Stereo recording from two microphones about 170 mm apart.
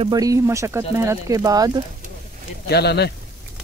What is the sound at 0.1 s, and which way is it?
Speech, 20° right (ahead or behind).